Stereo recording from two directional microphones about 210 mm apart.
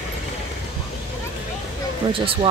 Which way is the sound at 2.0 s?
25° right (ahead or behind).